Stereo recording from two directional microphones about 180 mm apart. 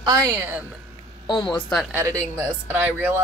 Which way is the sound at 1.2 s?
20° left (ahead or behind).